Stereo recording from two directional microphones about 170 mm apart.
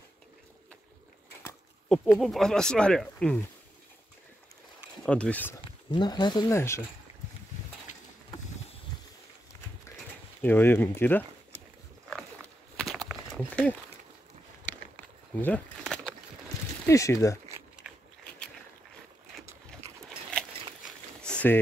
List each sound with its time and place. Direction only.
1.9 s speech: centre (ahead or behind)
5.0 s speech: 5° left (ahead or behind)
5.9 s speech: 25° left (ahead or behind)
10.4 s speech: 10° left (ahead or behind)
12.1 s a sound: centre (ahead or behind)
15.3 s speech: 10° left (ahead or behind)
16.8 s speech: 20° left (ahead or behind)
17.8 s a sound: 10° right (ahead or behind)
21.2 s a sound: 5° left (ahead or behind)